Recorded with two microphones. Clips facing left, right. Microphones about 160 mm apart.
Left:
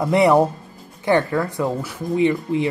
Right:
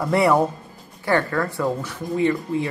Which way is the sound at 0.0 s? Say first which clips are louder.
Left 3 dB; 20° left (ahead or behind).